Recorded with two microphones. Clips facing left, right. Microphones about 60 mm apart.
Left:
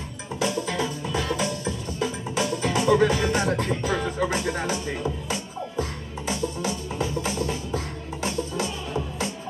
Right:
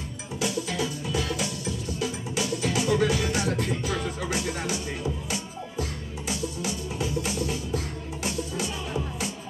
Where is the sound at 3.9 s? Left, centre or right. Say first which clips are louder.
Left 4 dB; left.